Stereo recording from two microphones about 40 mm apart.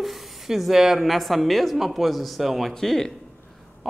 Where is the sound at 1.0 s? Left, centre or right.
Centre.